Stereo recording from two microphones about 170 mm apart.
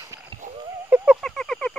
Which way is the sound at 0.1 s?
20° right (ahead or behind).